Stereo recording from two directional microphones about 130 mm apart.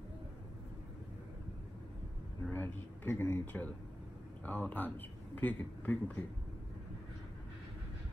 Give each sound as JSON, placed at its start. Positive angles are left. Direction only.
{"t": 2.5, "sound": "speech", "side_deg": 15}